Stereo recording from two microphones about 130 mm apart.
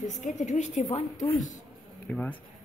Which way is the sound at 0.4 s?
65° left (ahead or behind).